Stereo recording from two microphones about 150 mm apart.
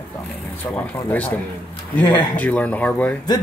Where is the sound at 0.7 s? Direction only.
10° left (ahead or behind).